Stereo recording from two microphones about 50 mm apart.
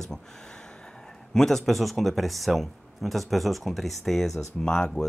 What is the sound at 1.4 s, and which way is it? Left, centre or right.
Speech, centre.